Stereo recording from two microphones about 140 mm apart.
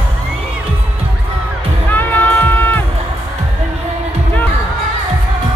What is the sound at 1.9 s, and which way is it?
Music, 15° left (ahead or behind).